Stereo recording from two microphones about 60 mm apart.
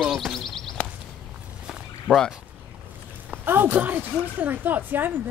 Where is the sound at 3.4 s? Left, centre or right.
Right.